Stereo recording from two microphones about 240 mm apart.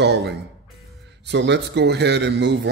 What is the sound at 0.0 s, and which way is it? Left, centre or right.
Speech, right.